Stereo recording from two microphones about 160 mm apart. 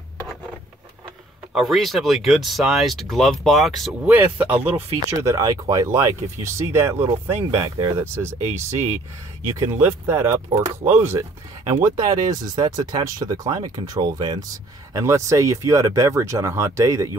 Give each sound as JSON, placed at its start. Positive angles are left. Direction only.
{"t": 1.5, "sound": "speech", "side_deg": 0}
{"t": 4.1, "sound": "speech", "side_deg": -10}
{"t": 9.6, "sound": "speech", "side_deg": -20}